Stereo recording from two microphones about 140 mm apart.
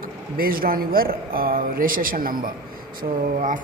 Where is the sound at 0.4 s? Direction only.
90° right.